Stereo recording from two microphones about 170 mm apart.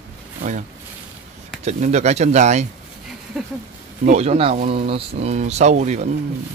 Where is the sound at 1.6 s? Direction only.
40° right (ahead or behind).